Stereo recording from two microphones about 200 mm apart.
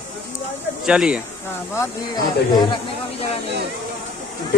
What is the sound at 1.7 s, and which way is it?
Speech, 20° left (ahead or behind).